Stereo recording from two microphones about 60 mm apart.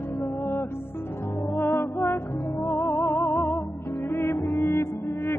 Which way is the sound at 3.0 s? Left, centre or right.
Left.